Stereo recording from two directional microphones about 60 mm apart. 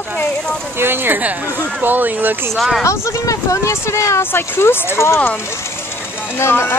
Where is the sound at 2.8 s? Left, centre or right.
Left.